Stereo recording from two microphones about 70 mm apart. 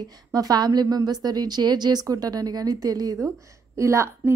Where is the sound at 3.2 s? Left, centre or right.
Right.